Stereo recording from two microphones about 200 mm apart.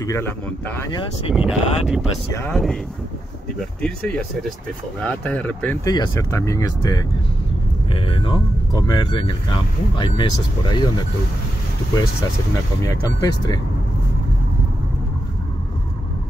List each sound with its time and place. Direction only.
0.0 s speech: 15° left (ahead or behind)
1.3 s speech: 5° right (ahead or behind); by 10.9 s 25° left (ahead or behind)
12.8 s speech: 20° left (ahead or behind)